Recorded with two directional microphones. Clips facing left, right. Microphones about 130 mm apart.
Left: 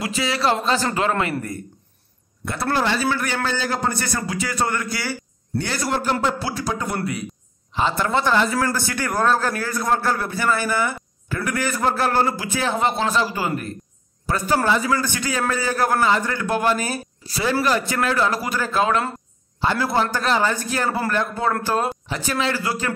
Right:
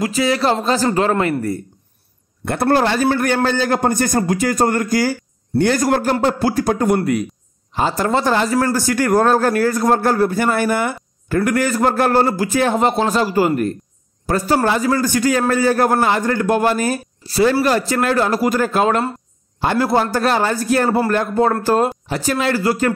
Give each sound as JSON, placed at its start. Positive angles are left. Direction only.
{"t": 0.0, "sound": "speech", "side_deg": -40}
{"t": 2.4, "sound": "a man's voice", "side_deg": -50}